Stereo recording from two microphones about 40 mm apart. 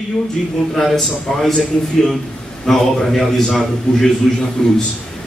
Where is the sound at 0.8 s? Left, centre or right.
Centre.